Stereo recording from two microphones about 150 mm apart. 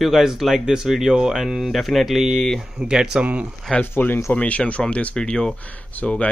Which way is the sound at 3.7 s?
10° left (ahead or behind).